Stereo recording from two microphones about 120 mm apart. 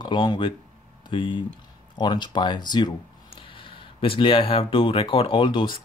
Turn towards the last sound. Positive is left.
turn(degrees=45)  # may be behind; listen again after turning